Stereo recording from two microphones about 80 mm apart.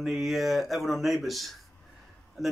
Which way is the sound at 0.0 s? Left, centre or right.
Centre.